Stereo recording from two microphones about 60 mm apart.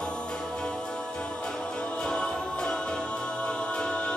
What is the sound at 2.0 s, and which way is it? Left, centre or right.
Music, centre.